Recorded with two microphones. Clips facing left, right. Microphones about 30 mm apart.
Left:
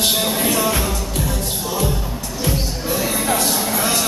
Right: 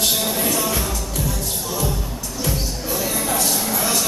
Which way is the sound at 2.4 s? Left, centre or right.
Left.